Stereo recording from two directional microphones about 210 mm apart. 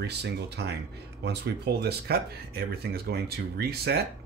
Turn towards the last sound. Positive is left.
turn(degrees=-50)  # may be behind; listen again after turning